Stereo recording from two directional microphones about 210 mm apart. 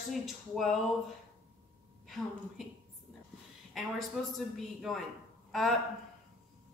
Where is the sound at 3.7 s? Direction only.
Centre (ahead or behind).